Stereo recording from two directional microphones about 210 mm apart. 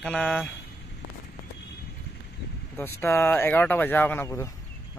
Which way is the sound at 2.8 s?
10° left (ahead or behind).